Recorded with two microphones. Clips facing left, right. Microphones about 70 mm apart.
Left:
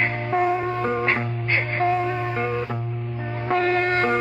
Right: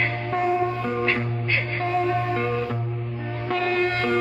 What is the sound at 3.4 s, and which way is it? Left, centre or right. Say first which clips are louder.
Music: left 2 dB; left.